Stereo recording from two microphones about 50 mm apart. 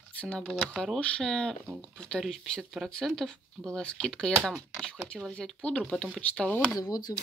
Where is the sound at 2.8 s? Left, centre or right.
Centre.